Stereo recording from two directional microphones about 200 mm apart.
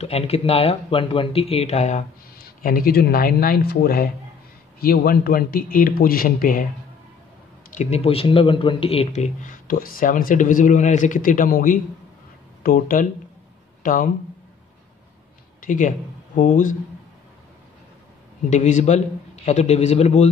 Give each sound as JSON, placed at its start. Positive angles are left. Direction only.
{"t": 0.0, "sound": "a man's voice", "side_deg": 30}
{"t": 7.7, "sound": "a man's voice", "side_deg": 35}
{"t": 15.6, "sound": "speech", "side_deg": 40}
{"t": 18.5, "sound": "speech", "side_deg": 35}